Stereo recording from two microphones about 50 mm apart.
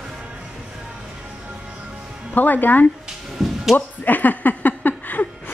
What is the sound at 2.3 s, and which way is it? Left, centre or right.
Speech, left.